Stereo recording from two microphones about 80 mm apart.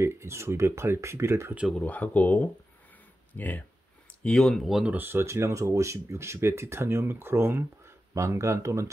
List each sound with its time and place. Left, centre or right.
0.0 s speech: right
1.7 s speech: centre
4.2 s speech: centre
4.8 s speech: right